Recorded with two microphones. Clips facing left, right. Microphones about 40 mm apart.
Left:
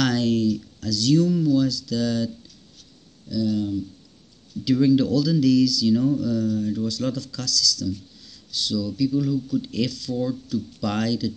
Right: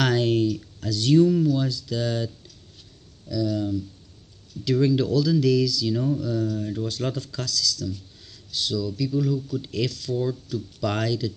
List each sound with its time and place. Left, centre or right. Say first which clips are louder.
0.0 s a sound: even; right
0.7 s speech: right 3 dB; right
3.3 s speech: left 1 dB; centre; by 8.0 s right
8.5 s speech: left 1 dB; centre